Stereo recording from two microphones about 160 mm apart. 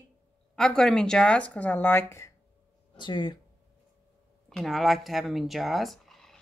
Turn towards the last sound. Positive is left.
turn(degrees=0)  # may be behind; listen again after turning